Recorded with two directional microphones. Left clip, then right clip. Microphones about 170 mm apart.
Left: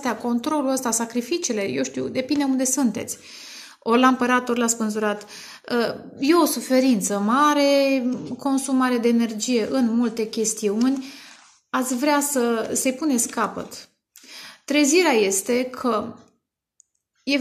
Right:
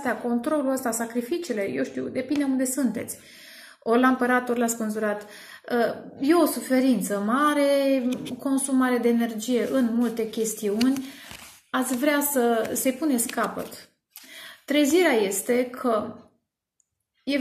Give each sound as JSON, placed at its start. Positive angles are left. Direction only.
{"t": 0.0, "sound": "a woman's voice", "side_deg": 60}
{"t": 12.1, "sound": "a woman's voice", "side_deg": 45}